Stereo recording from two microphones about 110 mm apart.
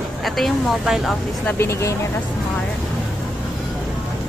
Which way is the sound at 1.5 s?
25° left (ahead or behind).